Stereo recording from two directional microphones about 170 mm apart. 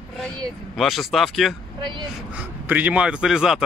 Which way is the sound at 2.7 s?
10° right (ahead or behind).